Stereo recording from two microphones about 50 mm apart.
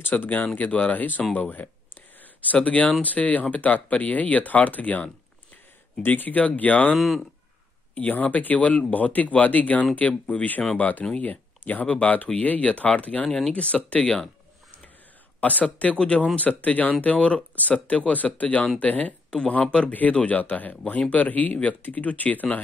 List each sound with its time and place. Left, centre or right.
0.2 s speech: left
7.0 s speech: centre
7.9 s speech: left
15.4 s speech: left
19.6 s speech: centre
19.9 s speech: left